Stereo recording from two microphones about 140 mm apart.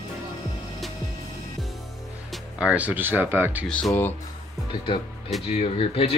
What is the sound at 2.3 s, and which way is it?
Speech, 10° right (ahead or behind).